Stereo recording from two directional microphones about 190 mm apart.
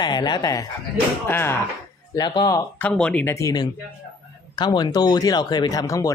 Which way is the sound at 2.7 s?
5° left (ahead or behind).